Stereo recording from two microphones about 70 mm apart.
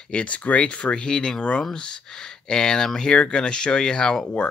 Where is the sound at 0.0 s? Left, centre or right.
Centre.